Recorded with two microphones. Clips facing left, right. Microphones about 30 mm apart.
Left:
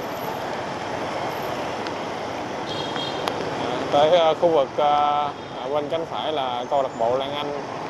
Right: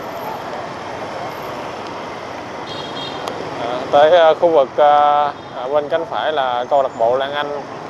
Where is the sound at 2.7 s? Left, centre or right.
Centre.